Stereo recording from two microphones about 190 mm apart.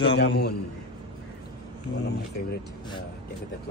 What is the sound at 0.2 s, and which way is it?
Speech, 60° left (ahead or behind).